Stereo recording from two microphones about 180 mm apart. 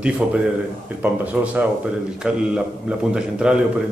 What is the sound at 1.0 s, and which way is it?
A man's voice, 10° right (ahead or behind).